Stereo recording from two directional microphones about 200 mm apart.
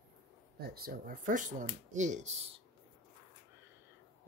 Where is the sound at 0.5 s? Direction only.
50° right (ahead or behind).